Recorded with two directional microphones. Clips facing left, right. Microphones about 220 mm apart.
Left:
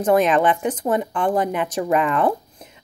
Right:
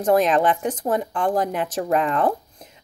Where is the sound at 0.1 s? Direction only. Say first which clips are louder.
Left 1 dB; centre (ahead or behind).